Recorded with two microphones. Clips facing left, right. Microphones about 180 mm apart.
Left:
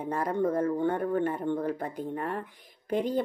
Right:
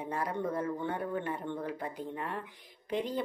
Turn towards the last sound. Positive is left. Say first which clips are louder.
# left 5 dB
turn(degrees=50)  # may be behind; listen again after turning